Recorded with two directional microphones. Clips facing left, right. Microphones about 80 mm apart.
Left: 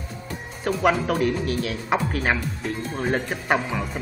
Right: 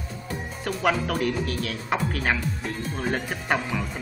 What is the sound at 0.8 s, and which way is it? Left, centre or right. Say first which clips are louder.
A woman's voice: left 3 dB; centre.